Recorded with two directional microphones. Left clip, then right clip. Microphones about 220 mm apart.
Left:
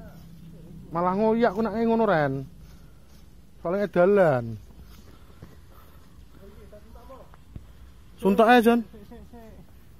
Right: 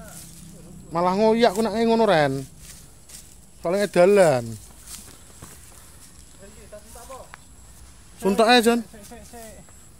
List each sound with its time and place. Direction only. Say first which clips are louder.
0.9 s speech: right 4 dB; 20° right (ahead or behind)
3.6 s speech: right 4 dB; 20° right (ahead or behind)
8.2 s a man's voice: right 1 dB; 5° right (ahead or behind)
9.3 s vehicle: right 8 dB; 35° right (ahead or behind)